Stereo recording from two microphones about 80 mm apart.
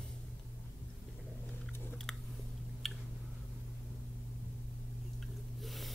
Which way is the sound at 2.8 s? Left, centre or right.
Centre.